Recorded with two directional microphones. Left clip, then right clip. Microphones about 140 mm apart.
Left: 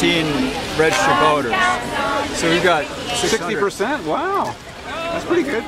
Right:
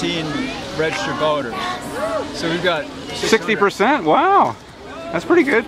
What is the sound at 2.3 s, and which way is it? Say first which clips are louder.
Speech: left 5 dB; 5° left (ahead or behind).